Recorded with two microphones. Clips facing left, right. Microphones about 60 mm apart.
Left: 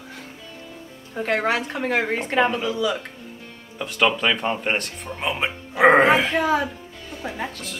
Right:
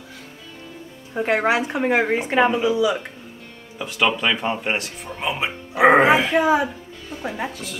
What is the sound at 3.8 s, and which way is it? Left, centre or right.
Speech, centre.